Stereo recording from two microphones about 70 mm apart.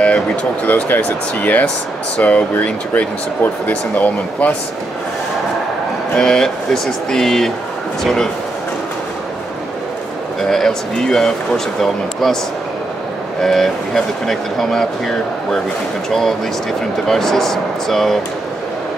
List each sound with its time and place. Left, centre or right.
0.0 s speech: centre
6.1 s speech: centre
10.5 s speech: centre
13.4 s speech: centre